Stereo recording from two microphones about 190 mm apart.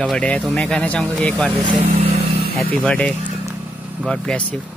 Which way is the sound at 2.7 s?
5° left (ahead or behind).